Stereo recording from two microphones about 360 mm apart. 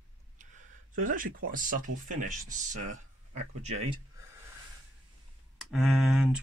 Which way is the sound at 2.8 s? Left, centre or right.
Right.